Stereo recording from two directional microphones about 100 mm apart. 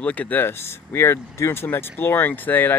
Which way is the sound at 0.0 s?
15° left (ahead or behind).